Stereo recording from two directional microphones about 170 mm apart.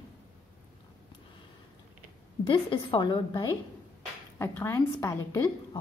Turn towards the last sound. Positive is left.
turn(degrees=20)  # may be behind; listen again after turning